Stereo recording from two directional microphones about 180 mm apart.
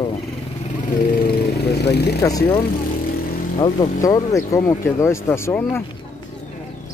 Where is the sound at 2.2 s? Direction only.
20° left (ahead or behind).